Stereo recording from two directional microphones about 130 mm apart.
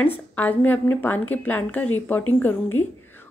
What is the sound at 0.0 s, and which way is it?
Speech, 15° left (ahead or behind).